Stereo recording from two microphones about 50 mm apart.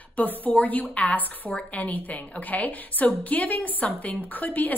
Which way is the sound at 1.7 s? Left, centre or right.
Left.